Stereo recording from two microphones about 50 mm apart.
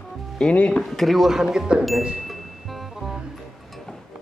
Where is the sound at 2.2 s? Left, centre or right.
Centre.